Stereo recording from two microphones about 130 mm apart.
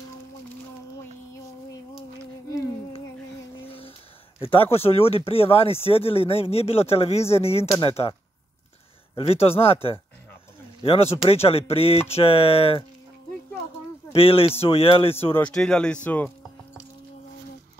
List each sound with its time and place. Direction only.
4.4 s speech: 45° left (ahead or behind)
14.1 s speech: 45° left (ahead or behind)
15.3 s speech: 10° left (ahead or behind)